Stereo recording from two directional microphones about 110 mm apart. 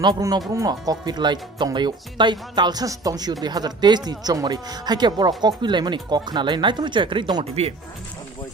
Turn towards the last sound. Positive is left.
turn(degrees=-45)  # may be behind; listen again after turning